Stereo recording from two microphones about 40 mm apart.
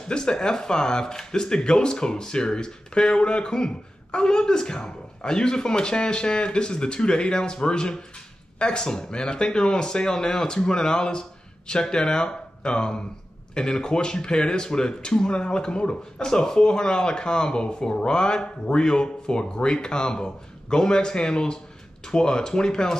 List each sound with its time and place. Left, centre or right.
0.1 s speech: centre